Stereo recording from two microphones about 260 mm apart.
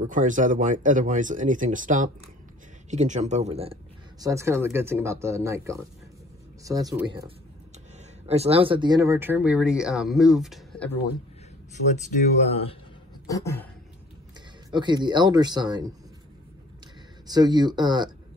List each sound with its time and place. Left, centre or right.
0.0 s speech: right
4.2 s speech: centre
11.9 s speech: left
13.3 s a sound: centre
14.7 s speech: centre
17.3 s speech: centre